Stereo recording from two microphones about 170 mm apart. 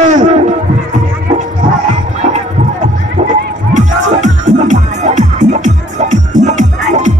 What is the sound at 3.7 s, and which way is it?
Music, 45° right (ahead or behind).